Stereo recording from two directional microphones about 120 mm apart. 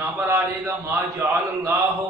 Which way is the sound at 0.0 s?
20° right (ahead or behind).